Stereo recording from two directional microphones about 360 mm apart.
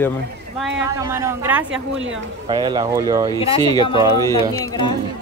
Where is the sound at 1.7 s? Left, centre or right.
Right.